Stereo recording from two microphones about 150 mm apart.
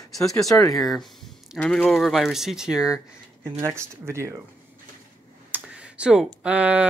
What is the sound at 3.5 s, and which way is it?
Speech, 20° right (ahead or behind).